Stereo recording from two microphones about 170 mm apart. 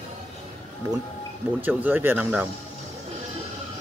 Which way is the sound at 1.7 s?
10° right (ahead or behind).